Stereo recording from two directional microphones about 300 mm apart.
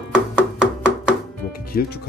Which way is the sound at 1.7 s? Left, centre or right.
Left.